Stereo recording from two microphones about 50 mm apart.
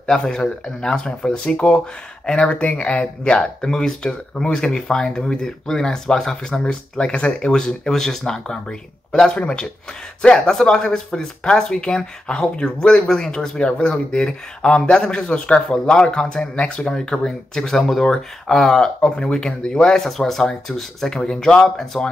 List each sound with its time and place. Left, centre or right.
0.0 s speech: centre